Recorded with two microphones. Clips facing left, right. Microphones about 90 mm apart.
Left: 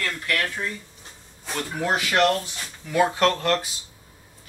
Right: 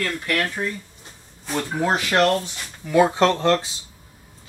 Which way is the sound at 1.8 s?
25° right (ahead or behind).